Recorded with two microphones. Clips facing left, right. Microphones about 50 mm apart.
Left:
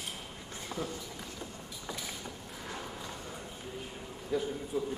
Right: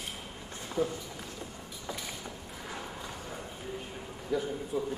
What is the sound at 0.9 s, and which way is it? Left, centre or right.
Vehicle, centre.